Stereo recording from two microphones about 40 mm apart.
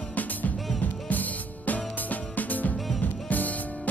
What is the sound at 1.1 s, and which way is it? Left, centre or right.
Music, left.